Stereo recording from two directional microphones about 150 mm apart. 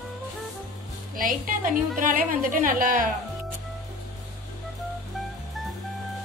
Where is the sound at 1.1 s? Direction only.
65° right (ahead or behind).